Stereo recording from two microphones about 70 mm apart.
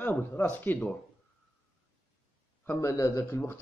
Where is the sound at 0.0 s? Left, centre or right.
Left.